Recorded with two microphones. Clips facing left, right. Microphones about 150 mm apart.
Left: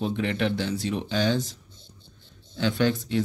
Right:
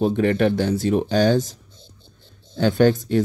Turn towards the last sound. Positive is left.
turn(degrees=-45)  # may be behind; listen again after turning